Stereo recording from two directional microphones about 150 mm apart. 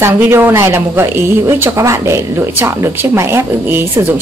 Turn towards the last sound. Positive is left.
turn(degrees=-15)  # may be behind; listen again after turning